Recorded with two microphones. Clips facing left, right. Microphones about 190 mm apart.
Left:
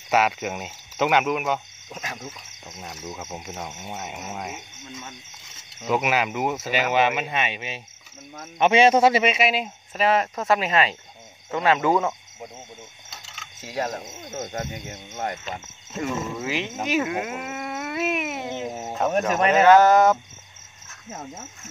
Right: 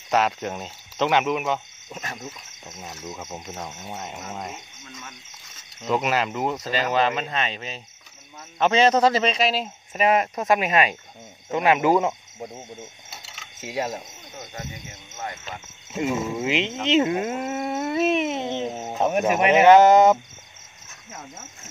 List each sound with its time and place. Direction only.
0.1 s speech: 5° left (ahead or behind)
5.8 s speech: 5° left (ahead or behind)
9.9 s speech: 15° right (ahead or behind)
13.1 s a sound: 10° right (ahead or behind)
14.3 s cricket: 45° left (ahead or behind)
15.9 s speech: 15° right (ahead or behind)
18.9 s speech: 10° right (ahead or behind)
21.1 s speech: 40° left (ahead or behind)